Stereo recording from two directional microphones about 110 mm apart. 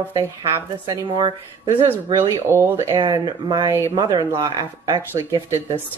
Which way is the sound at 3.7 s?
30° right (ahead or behind).